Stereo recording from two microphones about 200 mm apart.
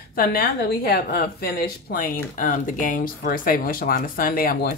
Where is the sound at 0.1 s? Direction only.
50° left (ahead or behind).